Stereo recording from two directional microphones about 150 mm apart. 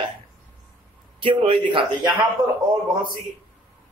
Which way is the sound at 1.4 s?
35° right (ahead or behind).